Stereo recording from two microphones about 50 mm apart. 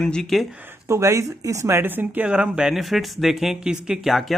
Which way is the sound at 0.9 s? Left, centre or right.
Right.